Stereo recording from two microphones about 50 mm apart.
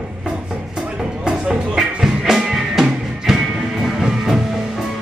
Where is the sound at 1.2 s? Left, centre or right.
Centre.